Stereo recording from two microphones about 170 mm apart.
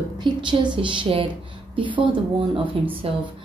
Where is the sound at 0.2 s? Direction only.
30° right (ahead or behind).